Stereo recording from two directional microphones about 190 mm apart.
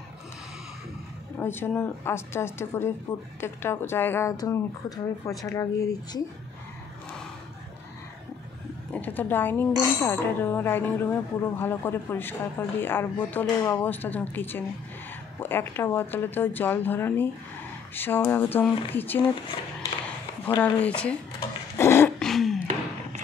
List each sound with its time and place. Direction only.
1.4 s speech: 10° left (ahead or behind)
8.9 s speech: 10° left (ahead or behind)
20.4 s speech: 10° left (ahead or behind)
21.7 s dog: 15° left (ahead or behind)
22.3 s a sound: centre (ahead or behind)